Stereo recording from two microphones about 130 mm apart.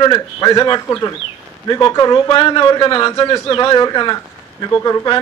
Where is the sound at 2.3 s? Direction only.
45° left (ahead or behind).